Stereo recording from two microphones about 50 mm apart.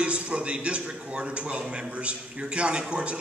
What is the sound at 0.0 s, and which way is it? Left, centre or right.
A man's voice, right.